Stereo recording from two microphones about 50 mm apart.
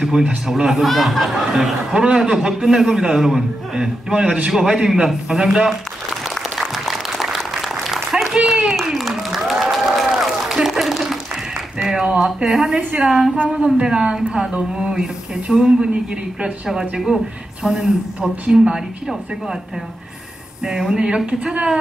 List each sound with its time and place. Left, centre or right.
0.5 s a man's voice: centre
6.3 s applause: centre
11.8 s a sound: centre
12.4 s a man's voice: centre
16.9 s a man's voice: centre
20.6 s a man's voice: centre